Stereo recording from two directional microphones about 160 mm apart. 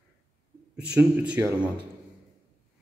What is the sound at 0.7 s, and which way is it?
Speech, 10° right (ahead or behind).